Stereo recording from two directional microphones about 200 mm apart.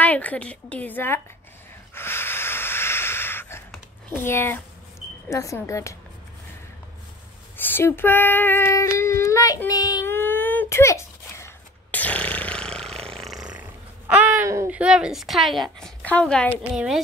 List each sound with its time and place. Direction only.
0.0 s a woman's voice: 10° left (ahead or behind)
2.0 s a sound: 10° left (ahead or behind)
5.3 s a woman's voice: 15° left (ahead or behind)
7.5 s child singing: 10° left (ahead or behind)